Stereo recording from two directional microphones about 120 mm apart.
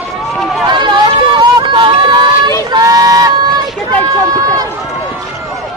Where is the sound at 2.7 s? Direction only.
35° right (ahead or behind).